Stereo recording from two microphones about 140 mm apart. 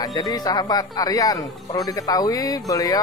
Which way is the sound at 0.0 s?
25° left (ahead or behind).